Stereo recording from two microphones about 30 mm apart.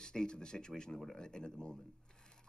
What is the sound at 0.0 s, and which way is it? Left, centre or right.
Speech, left.